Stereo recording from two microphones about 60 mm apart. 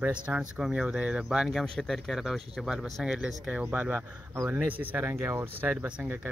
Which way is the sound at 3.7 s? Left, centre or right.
Right.